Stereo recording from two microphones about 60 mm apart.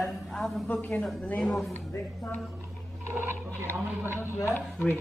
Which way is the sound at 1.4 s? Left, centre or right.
Centre.